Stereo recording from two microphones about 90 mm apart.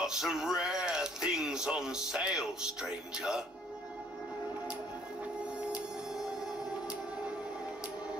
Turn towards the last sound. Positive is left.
turn(degrees=-10)  # may be behind; listen again after turning